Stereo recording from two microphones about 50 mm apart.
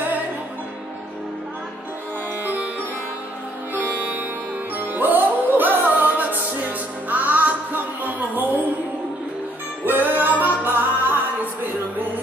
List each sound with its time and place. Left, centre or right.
2.4 s music: right
3.7 s music: right
9.8 s music: right